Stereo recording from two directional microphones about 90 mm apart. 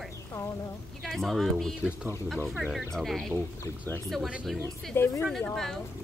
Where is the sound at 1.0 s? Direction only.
Centre (ahead or behind).